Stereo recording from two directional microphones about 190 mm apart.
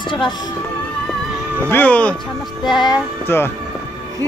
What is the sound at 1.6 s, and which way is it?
Speech, 10° left (ahead or behind).